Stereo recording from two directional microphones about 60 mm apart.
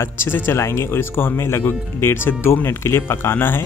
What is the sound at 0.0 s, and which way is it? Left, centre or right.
Speech, left.